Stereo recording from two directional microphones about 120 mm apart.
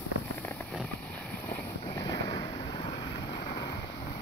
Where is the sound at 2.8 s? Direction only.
50° left (ahead or behind).